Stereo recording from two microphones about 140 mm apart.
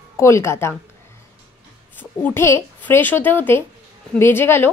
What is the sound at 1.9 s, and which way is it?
A woman's voice, 15° left (ahead or behind).